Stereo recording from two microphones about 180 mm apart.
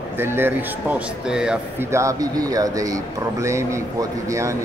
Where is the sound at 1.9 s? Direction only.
15° right (ahead or behind).